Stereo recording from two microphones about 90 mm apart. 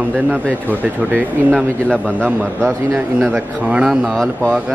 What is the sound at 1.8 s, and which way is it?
Speech, 10° left (ahead or behind).